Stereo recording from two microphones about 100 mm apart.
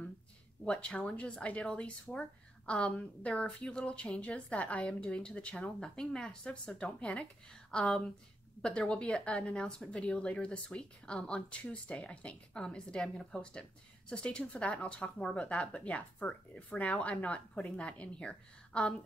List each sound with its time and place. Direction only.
0.7 s speech: 10° left (ahead or behind)